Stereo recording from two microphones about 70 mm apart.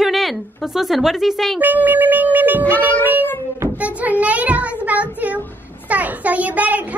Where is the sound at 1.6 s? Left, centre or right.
Right.